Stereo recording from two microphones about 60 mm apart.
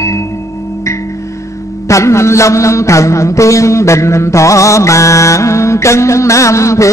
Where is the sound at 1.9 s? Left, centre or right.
Left.